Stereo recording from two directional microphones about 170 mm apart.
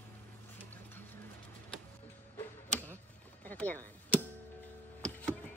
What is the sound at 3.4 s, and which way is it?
Music, 10° left (ahead or behind).